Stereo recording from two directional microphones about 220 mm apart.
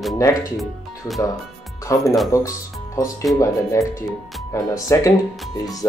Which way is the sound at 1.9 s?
15° left (ahead or behind).